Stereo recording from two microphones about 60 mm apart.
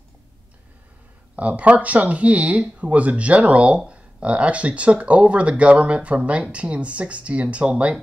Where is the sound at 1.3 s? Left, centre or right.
Right.